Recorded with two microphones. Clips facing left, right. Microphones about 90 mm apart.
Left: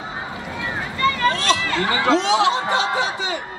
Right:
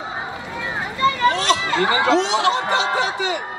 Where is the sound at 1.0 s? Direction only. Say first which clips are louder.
Right 2 dB; 20° right (ahead or behind).